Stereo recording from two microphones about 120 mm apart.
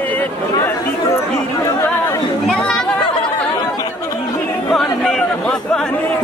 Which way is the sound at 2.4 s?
5° left (ahead or behind).